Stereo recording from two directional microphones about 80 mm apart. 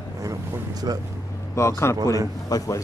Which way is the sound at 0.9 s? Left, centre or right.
Right.